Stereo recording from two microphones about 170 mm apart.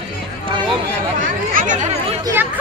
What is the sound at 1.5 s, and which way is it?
Speech, 50° right (ahead or behind).